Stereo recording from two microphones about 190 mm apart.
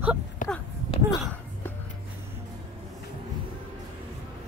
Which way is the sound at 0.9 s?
30° left (ahead or behind).